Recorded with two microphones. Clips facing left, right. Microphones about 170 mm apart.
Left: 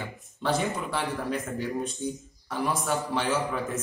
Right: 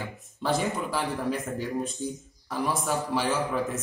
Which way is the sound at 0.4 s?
Centre (ahead or behind).